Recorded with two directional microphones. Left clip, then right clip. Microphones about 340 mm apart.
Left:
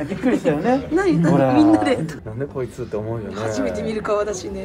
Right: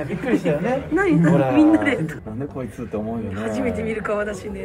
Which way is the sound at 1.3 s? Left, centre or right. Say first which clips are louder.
Left 3 dB; left.